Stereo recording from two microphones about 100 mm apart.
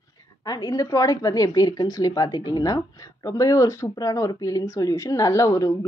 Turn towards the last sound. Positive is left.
turn(degrees=35)  # may be behind; listen again after turning